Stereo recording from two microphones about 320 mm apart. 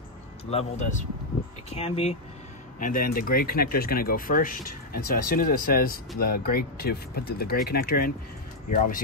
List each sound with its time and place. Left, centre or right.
0.5 s speech: centre